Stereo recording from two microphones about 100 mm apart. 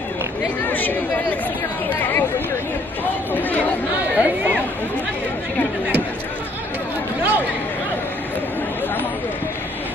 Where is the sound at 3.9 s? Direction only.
15° right (ahead or behind).